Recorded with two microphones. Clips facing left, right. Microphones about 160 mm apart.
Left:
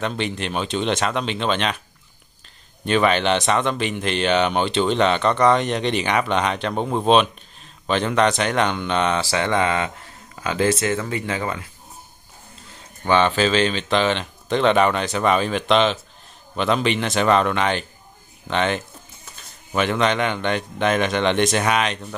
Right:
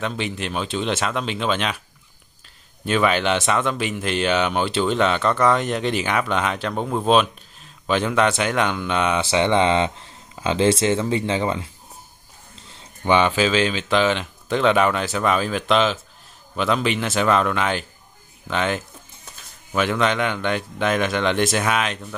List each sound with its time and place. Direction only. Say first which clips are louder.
0.0 s speech: left 1 dB; centre (ahead or behind)
2.8 s speech: left 1 dB; 5° right (ahead or behind)
9.2 s speech: right 3 dB; 20° right (ahead or behind)
13.0 s speech: even; 15° right (ahead or behind)